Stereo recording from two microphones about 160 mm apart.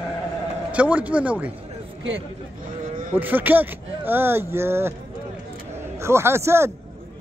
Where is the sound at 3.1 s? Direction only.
10° right (ahead or behind).